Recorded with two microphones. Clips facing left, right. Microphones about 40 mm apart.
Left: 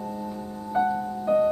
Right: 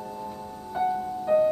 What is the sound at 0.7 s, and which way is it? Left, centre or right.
Music, centre.